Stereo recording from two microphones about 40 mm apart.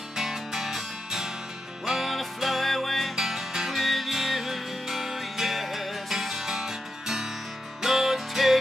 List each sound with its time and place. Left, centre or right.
0.1 s music: centre
3.2 s music: centre